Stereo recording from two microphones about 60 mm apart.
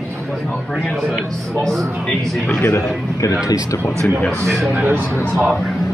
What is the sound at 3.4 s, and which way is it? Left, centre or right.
Speech, left.